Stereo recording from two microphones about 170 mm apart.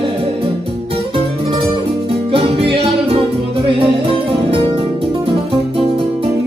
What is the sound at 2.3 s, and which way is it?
Music, 35° right (ahead or behind).